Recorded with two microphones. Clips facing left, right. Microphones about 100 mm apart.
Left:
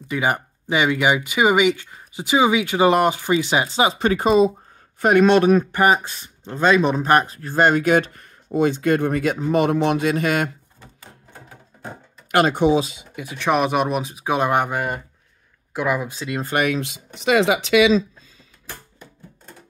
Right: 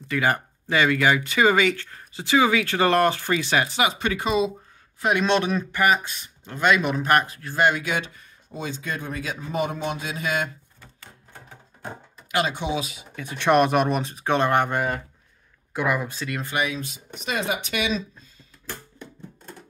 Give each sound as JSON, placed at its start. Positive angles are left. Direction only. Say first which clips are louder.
{"t": 0.1, "sound": "speech", "louder": "left 1 dB", "side_deg": 15}
{"t": 5.7, "sound": "speech", "louder": "left 4 dB", "side_deg": 35}
{"t": 11.3, "sound": "a sound", "louder": "even", "side_deg": 5}
{"t": 12.3, "sound": "speech", "louder": "left 8 dB", "side_deg": 50}
{"t": 13.1, "sound": "speech", "louder": "right 1 dB", "side_deg": 5}
{"t": 16.4, "sound": "speech", "louder": "left 7 dB", "side_deg": 55}